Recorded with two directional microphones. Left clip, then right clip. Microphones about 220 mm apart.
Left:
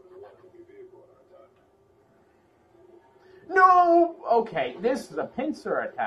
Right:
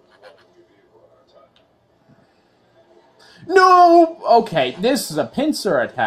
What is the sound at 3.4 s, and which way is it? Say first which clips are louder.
Speech: right 7 dB; 35° right (ahead or behind).